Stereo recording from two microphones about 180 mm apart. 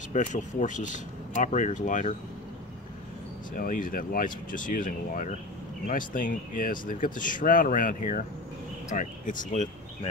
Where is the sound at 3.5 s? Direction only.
50° left (ahead or behind).